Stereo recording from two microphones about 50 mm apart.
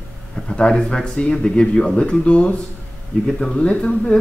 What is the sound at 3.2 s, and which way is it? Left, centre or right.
Speech, centre.